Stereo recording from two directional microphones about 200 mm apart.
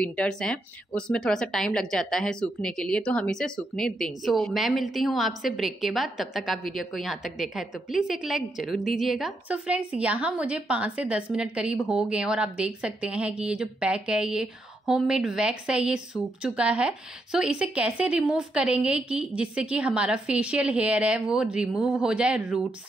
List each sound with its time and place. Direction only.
0.0 s a woman's voice: 5° left (ahead or behind)